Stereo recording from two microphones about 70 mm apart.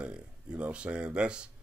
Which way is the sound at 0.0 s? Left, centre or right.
Centre.